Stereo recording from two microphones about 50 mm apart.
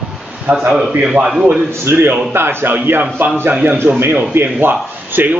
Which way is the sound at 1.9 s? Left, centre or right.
Right.